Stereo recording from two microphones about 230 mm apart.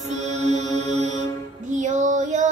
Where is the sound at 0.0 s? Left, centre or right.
Right.